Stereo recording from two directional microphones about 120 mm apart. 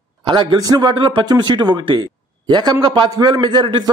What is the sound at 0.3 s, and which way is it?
A man's voice, 40° right (ahead or behind).